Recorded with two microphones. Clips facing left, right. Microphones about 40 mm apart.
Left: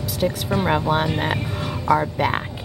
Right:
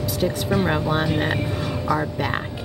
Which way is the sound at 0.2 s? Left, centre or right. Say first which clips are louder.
Even; centre.